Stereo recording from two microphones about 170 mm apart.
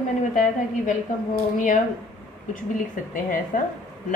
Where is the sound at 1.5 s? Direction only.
50° left (ahead or behind).